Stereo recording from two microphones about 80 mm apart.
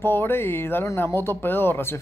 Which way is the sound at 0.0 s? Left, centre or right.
Left.